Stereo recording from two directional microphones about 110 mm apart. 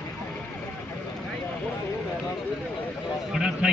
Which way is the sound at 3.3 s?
10° right (ahead or behind).